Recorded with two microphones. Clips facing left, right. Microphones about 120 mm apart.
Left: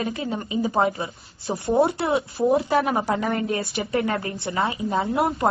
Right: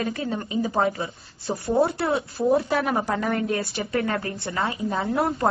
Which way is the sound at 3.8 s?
25° left (ahead or behind).